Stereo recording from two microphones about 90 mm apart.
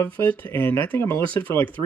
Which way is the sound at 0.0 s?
20° left (ahead or behind).